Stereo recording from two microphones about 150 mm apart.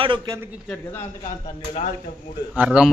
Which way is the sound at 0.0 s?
35° right (ahead or behind).